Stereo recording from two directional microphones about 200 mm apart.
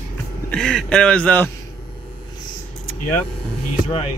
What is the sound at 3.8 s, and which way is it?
Speech, 30° left (ahead or behind).